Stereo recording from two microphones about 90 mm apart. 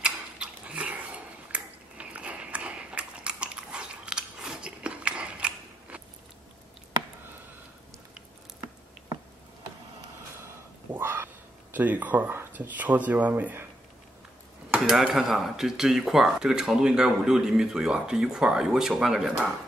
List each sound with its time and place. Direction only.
0.0 s ping: 10° right (ahead or behind)
10.9 s a sound: 25° right (ahead or behind)
11.7 s speech: 20° right (ahead or behind)
14.9 s speech: 5° right (ahead or behind)